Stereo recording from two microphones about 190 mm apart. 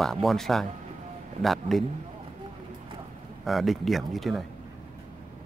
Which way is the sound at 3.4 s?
Centre (ahead or behind).